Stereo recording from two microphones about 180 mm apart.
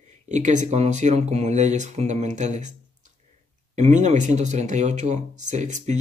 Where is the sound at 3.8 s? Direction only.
40° right (ahead or behind).